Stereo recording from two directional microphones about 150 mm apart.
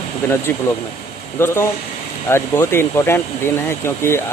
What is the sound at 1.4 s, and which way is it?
Speech, 15° left (ahead or behind).